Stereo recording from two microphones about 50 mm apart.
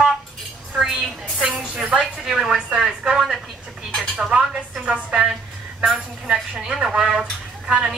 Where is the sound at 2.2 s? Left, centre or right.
Centre.